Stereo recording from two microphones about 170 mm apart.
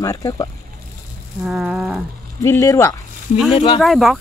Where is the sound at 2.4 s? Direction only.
15° left (ahead or behind).